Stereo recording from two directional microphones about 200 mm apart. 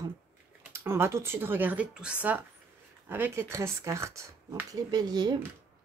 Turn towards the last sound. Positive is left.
turn(degrees=-20)  # may be behind; listen again after turning